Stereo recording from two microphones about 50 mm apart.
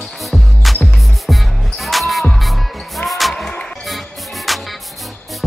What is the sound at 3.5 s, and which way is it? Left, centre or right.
Music, left.